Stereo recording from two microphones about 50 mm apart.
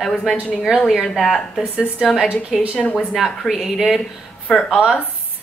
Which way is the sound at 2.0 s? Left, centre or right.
Centre.